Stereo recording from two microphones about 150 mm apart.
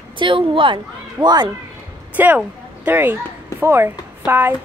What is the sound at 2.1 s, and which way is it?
A woman's voice, 10° right (ahead or behind).